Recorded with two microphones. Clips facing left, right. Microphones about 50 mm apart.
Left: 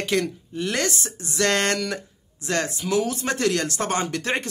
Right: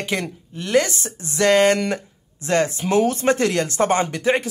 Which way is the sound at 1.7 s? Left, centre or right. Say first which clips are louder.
Right 4 dB; right.